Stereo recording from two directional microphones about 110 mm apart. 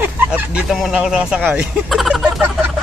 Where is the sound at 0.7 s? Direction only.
Centre (ahead or behind).